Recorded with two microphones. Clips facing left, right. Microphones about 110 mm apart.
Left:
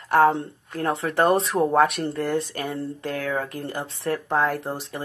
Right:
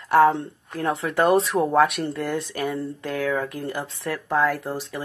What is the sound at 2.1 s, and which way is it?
Speech, 40° left (ahead or behind).